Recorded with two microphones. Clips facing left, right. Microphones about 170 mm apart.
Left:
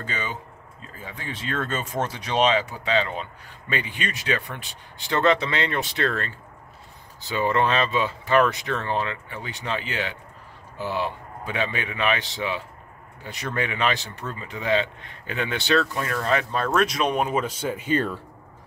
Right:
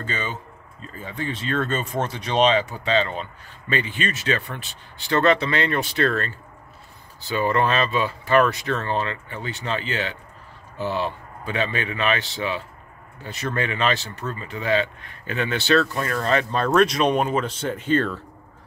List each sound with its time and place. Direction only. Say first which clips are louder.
0.0 s speech: right 2 dB; 10° left (ahead or behind)